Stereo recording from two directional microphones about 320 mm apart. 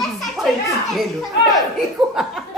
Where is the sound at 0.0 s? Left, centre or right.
Centre.